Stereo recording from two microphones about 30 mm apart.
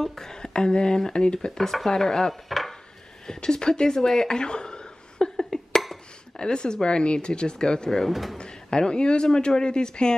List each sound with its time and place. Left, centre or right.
0.0 s speech: centre
1.6 s speech: centre
3.9 s a sound: centre
6.3 s speech: left
8.1 s speech: centre
8.4 s a man's voice: left